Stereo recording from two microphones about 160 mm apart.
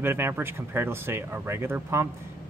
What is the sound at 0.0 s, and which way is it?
Speech, 15° right (ahead or behind).